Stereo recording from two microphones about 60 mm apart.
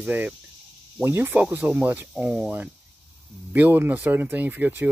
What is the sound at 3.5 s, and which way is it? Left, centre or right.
Speech, right.